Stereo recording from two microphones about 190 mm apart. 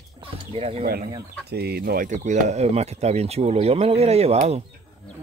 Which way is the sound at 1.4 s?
55° right (ahead or behind).